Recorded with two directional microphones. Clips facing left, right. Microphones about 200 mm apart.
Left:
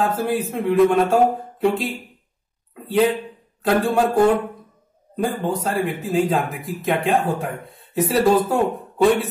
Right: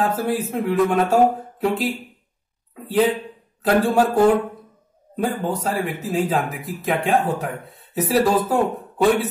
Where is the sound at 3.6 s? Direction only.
Centre (ahead or behind).